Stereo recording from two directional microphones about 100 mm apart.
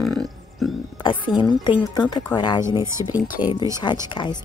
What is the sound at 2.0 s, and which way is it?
Speech, 45° left (ahead or behind).